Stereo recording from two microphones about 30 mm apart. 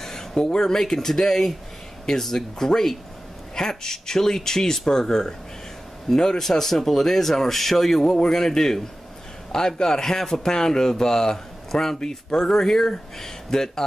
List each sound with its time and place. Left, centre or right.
0.0 s a man's voice: centre
6.6 s speech: centre